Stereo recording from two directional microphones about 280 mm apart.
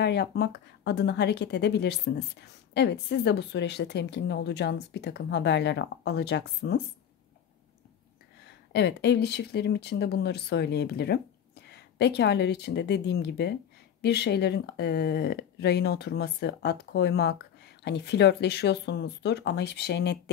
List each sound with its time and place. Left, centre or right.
0.0 s speech: left
8.5 s speech: left